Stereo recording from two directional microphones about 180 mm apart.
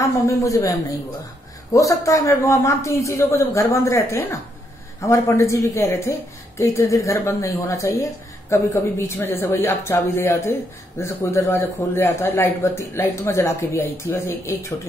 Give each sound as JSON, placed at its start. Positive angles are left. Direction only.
{"t": 0.0, "sound": "speech", "side_deg": 15}